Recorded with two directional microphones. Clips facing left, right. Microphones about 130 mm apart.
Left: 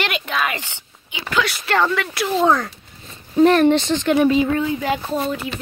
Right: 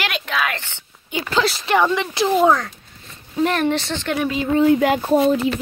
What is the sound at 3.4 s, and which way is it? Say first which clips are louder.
Speech: left 6 dB; 40° left (ahead or behind).